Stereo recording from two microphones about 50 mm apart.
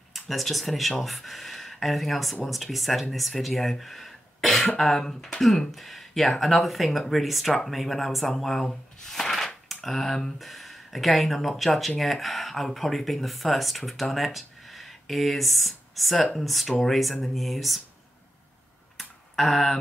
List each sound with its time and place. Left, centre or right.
0.1 s speech: centre
18.9 s typing: centre